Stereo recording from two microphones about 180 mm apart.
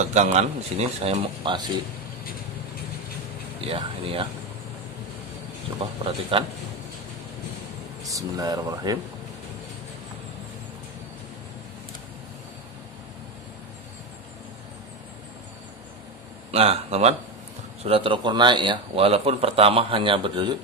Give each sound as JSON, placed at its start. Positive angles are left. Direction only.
{"t": 0.0, "sound": "a man's voice", "side_deg": -40}
{"t": 3.6, "sound": "a man's voice", "side_deg": -30}
{"t": 5.8, "sound": "a man's voice", "side_deg": -30}
{"t": 8.0, "sound": "a man's voice", "side_deg": -20}
{"t": 16.5, "sound": "a man's voice", "side_deg": -35}